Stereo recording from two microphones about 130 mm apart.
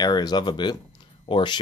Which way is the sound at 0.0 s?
30° left (ahead or behind).